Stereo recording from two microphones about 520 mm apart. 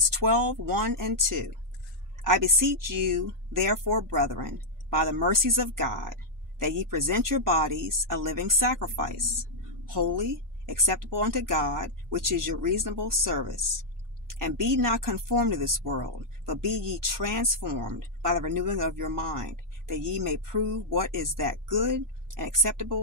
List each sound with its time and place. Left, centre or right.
0.1 s speech: right